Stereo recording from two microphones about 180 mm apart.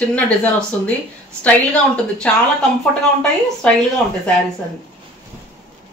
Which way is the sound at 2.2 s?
5° left (ahead or behind).